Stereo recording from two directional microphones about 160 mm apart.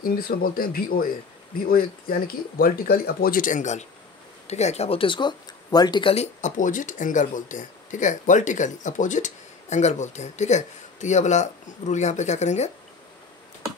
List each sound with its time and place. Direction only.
0.0 s speech: 65° left (ahead or behind); by 6.2 s 30° left (ahead or behind)
6.4 s speech: 55° left (ahead or behind)